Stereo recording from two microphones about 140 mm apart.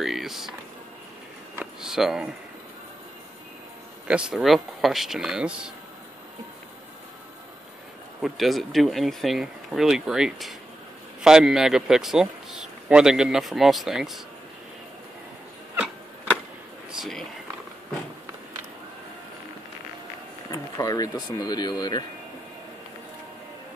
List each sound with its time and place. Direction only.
0.0 s speech: centre (ahead or behind)
1.6 s speech: 5° right (ahead or behind)
4.1 s a man's voice: 5° right (ahead or behind)
8.2 s a man's voice: centre (ahead or behind)
17.0 s a man's voice: centre (ahead or behind)
20.5 s speech: 25° left (ahead or behind)